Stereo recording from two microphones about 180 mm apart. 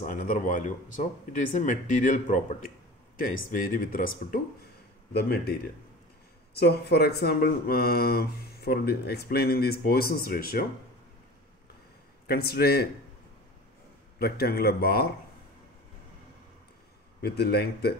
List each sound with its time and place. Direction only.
0.0 s speech: 45° left (ahead or behind)
3.4 s speech: 45° left (ahead or behind)
5.1 s speech: 60° left (ahead or behind)
6.6 s speech: 65° left (ahead or behind)
12.3 s speech: 60° left (ahead or behind)
14.1 s speech: 60° left (ahead or behind)
17.2 s speech: 60° left (ahead or behind)